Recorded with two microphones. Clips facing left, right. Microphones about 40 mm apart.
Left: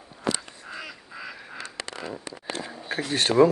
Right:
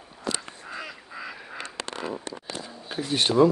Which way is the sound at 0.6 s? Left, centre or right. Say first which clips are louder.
Right 1 dB; centre.